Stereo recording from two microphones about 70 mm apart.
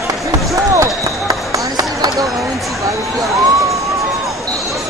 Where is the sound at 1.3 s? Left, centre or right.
Right.